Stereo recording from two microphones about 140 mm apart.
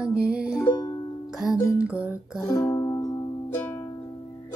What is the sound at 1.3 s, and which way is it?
Music, centre (ahead or behind).